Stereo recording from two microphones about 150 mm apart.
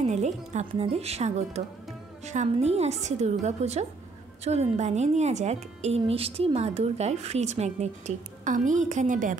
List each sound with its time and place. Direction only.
0.0 s music: 50° right (ahead or behind)
0.5 s a woman's voice: 45° right (ahead or behind)